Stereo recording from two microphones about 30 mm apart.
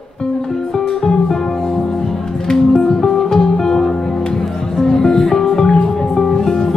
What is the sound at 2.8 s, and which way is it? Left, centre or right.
Music, centre.